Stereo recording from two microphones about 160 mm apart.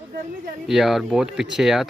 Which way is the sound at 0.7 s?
Centre (ahead or behind).